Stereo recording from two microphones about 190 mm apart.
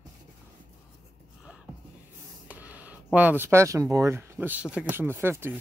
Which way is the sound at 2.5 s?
10° right (ahead or behind).